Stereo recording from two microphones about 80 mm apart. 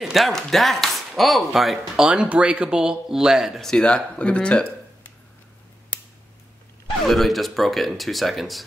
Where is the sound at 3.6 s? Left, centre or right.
Centre.